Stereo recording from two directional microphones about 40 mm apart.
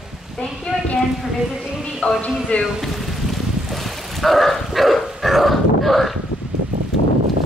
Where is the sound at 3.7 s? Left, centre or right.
Centre.